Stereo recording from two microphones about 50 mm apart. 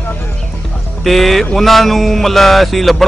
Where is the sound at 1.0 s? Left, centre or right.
Centre.